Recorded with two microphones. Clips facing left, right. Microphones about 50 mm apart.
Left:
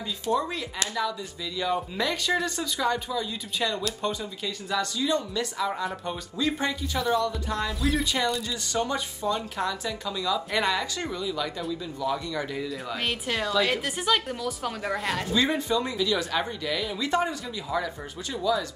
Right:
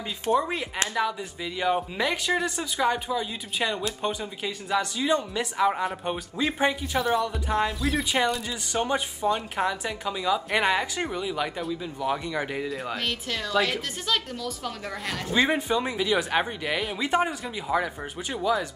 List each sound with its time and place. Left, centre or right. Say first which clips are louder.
0.4 s a woman's voice: right 2 dB; right
2.0 s a woman's voice: right 1 dB; right
12.9 s a woman's voice: left 1 dB; centre
15.3 s a woman's voice: right 3 dB; right
17.0 s speech: right 2 dB; right
17.7 s a woman's voice: right 3 dB; right